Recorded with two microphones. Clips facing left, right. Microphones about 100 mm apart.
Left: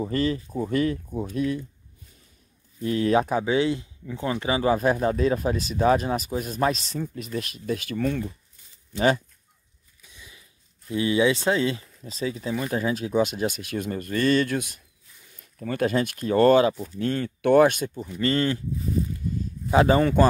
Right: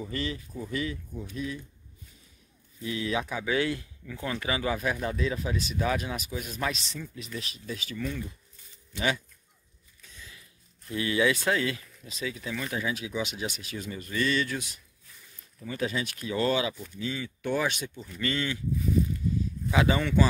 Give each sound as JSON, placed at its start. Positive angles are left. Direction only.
{"t": 0.0, "sound": "speech", "side_deg": 40}
{"t": 2.8, "sound": "speech", "side_deg": 45}
{"t": 3.4, "sound": "speech", "side_deg": 20}
{"t": 10.0, "sound": "a sound", "side_deg": 15}
{"t": 10.9, "sound": "speech", "side_deg": 25}
{"t": 17.0, "sound": "speech", "side_deg": 55}
{"t": 19.7, "sound": "speech", "side_deg": 40}